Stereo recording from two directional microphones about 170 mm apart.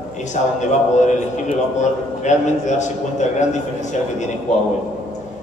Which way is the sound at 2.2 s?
45° left (ahead or behind).